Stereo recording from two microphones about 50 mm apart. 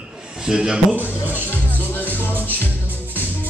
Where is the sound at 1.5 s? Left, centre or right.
Left.